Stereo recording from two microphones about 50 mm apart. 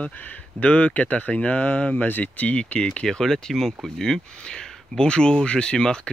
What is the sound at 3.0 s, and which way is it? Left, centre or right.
Speech, centre.